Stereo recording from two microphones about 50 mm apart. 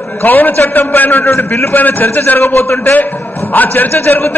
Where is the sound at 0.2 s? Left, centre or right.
Left.